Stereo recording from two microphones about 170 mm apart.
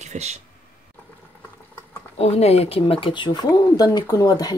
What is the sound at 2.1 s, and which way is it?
Speech, 40° left (ahead or behind).